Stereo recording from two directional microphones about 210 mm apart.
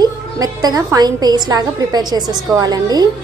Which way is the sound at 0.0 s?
15° right (ahead or behind).